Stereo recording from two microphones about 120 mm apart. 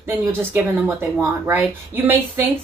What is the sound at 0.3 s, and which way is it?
A woman's voice, 15° right (ahead or behind).